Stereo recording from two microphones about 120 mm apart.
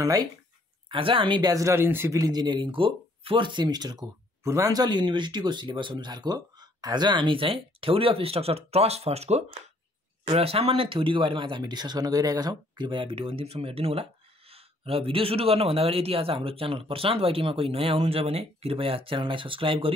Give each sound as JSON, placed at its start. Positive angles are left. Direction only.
{"t": 0.0, "sound": "speech", "side_deg": -30}
{"t": 0.8, "sound": "speech", "side_deg": -45}
{"t": 10.2, "sound": "a man's voice", "side_deg": -50}